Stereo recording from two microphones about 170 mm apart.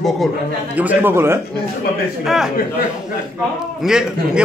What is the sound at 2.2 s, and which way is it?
Speech, centre (ahead or behind).